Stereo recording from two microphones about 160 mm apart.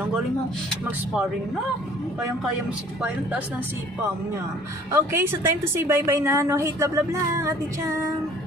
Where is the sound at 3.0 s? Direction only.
10° right (ahead or behind).